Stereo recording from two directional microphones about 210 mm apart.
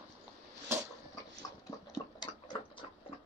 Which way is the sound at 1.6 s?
20° left (ahead or behind).